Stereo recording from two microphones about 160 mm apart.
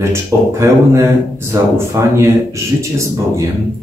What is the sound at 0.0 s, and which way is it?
Speech, 15° right (ahead or behind).